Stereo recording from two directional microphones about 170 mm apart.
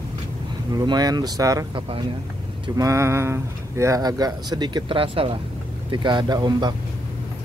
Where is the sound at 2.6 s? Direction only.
20° right (ahead or behind).